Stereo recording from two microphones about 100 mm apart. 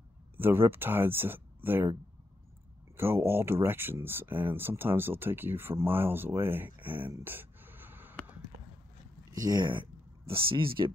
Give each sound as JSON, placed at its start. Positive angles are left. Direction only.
{"t": 0.4, "sound": "speech", "side_deg": -20}
{"t": 3.0, "sound": "speech", "side_deg": -25}
{"t": 9.4, "sound": "speech", "side_deg": -45}